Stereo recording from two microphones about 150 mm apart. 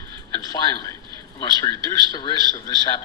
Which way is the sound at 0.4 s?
25° left (ahead or behind).